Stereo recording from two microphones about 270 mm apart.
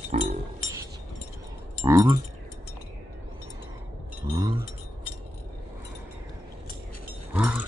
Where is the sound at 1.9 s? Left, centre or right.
Centre.